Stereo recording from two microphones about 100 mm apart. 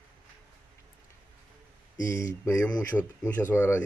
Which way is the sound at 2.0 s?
30° left (ahead or behind).